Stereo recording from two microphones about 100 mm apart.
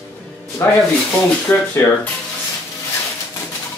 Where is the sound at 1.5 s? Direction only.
20° left (ahead or behind).